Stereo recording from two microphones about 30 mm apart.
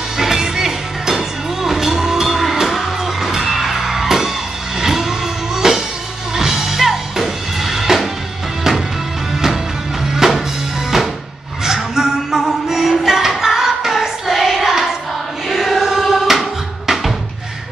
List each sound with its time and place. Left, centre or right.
0.2 s music: centre
10.2 s music: centre
11.6 s music: centre